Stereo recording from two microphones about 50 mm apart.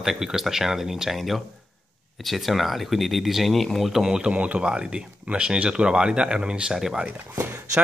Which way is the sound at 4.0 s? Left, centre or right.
Centre.